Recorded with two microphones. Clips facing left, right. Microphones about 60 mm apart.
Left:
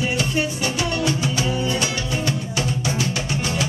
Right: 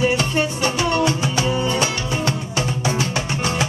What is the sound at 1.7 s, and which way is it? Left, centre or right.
Music, right.